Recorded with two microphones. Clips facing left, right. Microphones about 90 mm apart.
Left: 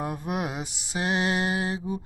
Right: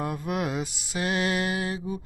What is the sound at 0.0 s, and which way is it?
Mantra, 20° left (ahead or behind).